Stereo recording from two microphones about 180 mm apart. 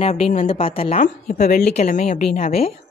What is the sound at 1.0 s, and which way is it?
Speech, 45° left (ahead or behind).